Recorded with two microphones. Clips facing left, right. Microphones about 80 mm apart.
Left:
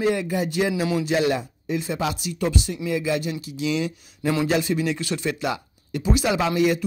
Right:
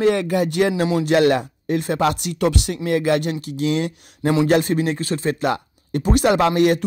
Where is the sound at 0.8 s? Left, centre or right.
Right.